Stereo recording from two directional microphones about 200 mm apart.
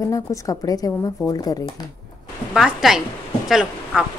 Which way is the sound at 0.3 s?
15° left (ahead or behind).